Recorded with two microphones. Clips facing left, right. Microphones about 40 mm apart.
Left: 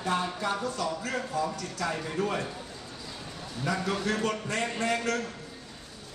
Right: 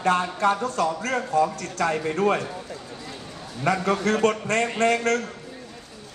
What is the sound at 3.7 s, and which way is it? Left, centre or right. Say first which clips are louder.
A man's voice: right 7 dB; right.